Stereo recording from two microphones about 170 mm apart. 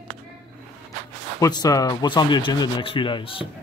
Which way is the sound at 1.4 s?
20° left (ahead or behind).